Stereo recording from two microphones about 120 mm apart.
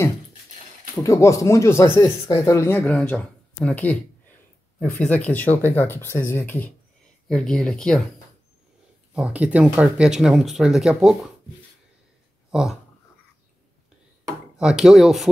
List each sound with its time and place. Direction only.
1.0 s speech: 25° left (ahead or behind)
2.8 s speech: 10° left (ahead or behind)
5.0 s speech: 10° left (ahead or behind)
7.2 s speech: 5° left (ahead or behind)
9.1 s speech: 10° right (ahead or behind)
12.4 s a sound: 5° right (ahead or behind)
14.6 s speech: 5° right (ahead or behind)